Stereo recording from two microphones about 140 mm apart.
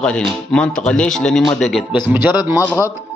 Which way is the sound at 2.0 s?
15° right (ahead or behind).